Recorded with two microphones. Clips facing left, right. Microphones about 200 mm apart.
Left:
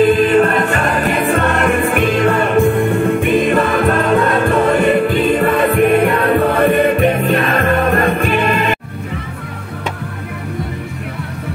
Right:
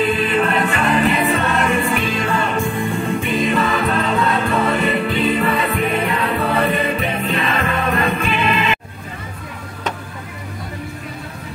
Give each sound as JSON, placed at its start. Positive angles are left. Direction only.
{"t": 0.0, "sound": "music", "side_deg": 45}